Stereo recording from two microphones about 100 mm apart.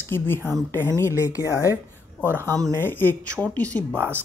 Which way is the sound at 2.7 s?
20° left (ahead or behind).